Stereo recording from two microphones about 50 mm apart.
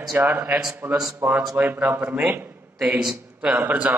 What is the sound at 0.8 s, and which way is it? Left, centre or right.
Speech, right.